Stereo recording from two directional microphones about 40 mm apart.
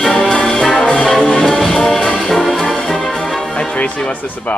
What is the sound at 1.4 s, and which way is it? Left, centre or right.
Music, centre.